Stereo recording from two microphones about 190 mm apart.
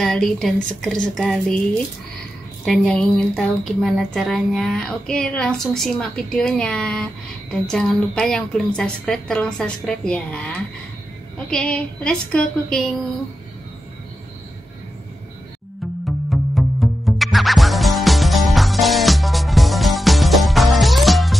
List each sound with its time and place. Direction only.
0.0 s a woman's voice: 5° left (ahead or behind)
16.3 s music: centre (ahead or behind)